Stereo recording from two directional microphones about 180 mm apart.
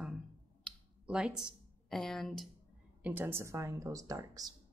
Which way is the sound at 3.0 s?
10° right (ahead or behind).